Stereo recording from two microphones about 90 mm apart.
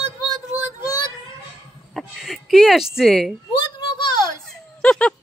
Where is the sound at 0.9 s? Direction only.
50° left (ahead or behind).